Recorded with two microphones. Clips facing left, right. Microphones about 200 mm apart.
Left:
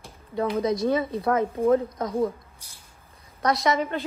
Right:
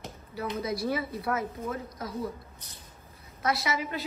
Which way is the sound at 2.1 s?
50° left (ahead or behind).